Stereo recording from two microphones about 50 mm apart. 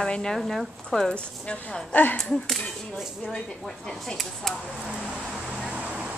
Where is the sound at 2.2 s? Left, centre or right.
Centre.